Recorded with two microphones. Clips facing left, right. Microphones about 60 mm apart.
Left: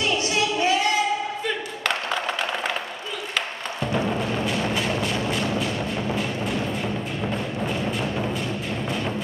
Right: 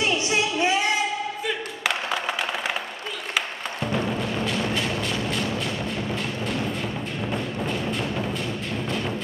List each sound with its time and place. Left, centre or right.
0.0 s a sound: right
1.5 s clapping: centre
3.3 s music: centre